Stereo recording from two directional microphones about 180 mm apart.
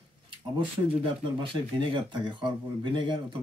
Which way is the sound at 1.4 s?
30° right (ahead or behind).